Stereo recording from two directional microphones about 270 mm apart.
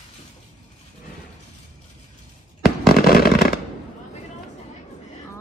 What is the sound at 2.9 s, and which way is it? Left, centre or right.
Fireworks, left.